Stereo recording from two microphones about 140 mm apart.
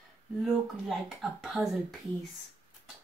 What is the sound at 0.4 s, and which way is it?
Speech, centre (ahead or behind).